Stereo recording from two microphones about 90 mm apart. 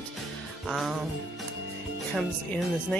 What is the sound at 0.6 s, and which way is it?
Music, centre (ahead or behind).